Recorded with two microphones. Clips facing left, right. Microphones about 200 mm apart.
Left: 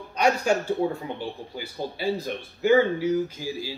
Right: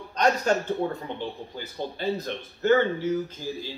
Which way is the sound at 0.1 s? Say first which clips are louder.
Left 1 dB; 10° left (ahead or behind).